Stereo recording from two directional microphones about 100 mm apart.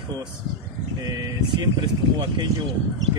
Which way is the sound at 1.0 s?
40° right (ahead or behind).